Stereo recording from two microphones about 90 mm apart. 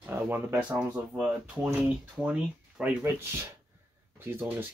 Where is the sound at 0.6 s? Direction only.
15° right (ahead or behind).